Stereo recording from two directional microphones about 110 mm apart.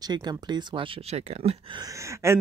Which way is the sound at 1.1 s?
75° right (ahead or behind).